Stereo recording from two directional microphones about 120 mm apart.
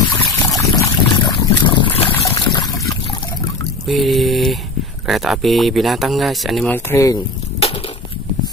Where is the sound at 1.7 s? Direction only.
50° left (ahead or behind).